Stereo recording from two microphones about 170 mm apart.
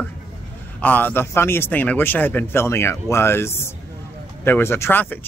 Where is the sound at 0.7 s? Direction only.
10° left (ahead or behind).